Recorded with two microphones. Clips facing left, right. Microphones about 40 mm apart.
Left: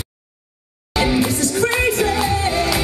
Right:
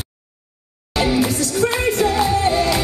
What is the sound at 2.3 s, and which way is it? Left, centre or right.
Music, centre.